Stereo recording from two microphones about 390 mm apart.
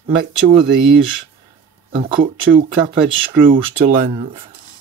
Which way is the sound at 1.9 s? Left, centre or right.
Centre.